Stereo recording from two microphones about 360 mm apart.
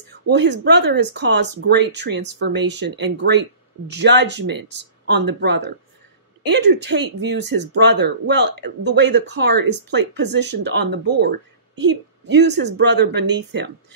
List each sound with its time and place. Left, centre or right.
0.1 s speech: right
6.4 s speech: right